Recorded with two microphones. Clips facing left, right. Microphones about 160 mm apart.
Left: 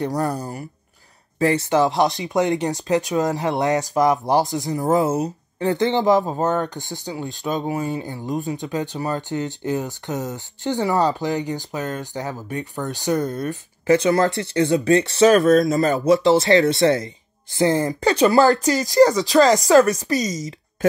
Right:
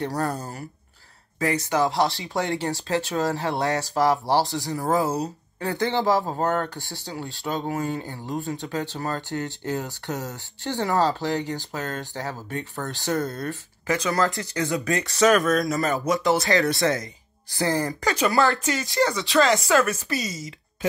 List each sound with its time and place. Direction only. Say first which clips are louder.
0.0 s speech: left 4 dB; 15° left (ahead or behind)
1.4 s speech: left 5 dB; 25° left (ahead or behind)
13.8 s speech: left 7 dB; 30° left (ahead or behind)
18.0 s speech: left 7 dB; 35° left (ahead or behind)